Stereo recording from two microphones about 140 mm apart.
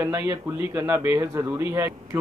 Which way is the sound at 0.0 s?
20° right (ahead or behind).